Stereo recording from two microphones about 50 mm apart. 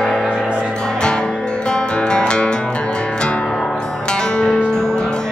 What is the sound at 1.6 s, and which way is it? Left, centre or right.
Music, centre.